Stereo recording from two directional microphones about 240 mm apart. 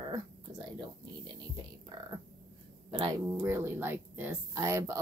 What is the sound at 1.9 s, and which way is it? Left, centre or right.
Speech, centre.